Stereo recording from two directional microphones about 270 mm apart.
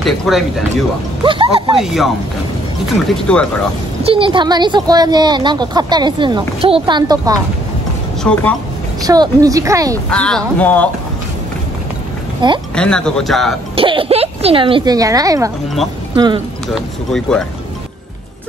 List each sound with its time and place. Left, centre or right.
0.0 s speech: centre
1.2 s speech: centre
1.8 s speech: centre
3.3 s speech: centre
4.0 s a woman's voice: centre
8.2 s speech: centre
9.0 s a woman's voice: centre
10.0 s speech: centre
12.4 s a woman's voice: centre
12.7 s speech: centre
13.7 s speech: centre
16.7 s speech: centre